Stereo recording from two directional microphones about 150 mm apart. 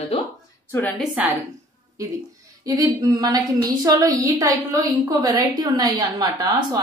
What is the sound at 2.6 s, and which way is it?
A woman's voice, 25° right (ahead or behind).